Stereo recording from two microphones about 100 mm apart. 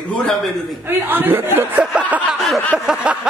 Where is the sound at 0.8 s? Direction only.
20° right (ahead or behind).